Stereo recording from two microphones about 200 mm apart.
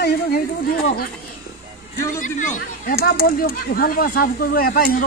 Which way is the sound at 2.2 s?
40° left (ahead or behind).